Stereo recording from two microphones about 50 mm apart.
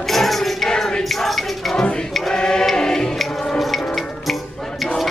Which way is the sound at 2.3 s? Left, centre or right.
Centre.